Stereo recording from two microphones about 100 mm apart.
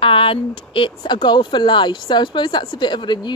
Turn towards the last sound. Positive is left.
turn(degrees=50)  # may be behind; listen again after turning